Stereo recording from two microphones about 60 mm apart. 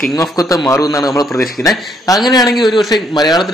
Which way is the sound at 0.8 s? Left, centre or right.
Left.